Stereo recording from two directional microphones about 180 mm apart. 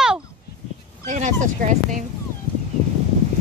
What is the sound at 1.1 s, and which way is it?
Speech, 45° right (ahead or behind).